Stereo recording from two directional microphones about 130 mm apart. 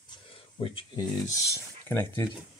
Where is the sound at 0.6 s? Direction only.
45° left (ahead or behind).